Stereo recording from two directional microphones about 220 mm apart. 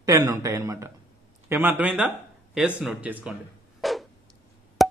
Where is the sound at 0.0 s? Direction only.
15° right (ahead or behind).